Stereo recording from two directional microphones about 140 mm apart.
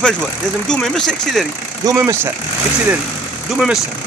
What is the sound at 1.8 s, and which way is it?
Speech, 20° right (ahead or behind).